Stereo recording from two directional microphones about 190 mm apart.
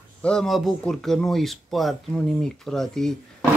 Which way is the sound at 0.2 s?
5° left (ahead or behind).